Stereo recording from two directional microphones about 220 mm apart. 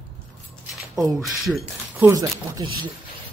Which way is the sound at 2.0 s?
15° right (ahead or behind).